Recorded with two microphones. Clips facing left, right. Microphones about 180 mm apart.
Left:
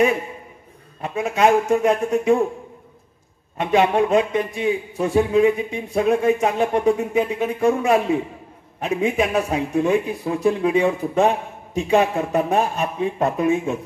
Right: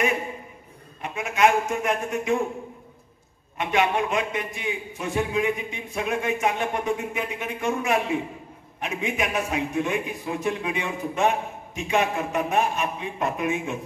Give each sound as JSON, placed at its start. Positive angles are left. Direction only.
{"t": 1.0, "sound": "a man's voice", "side_deg": 35}
{"t": 3.5, "sound": "a man's voice", "side_deg": 35}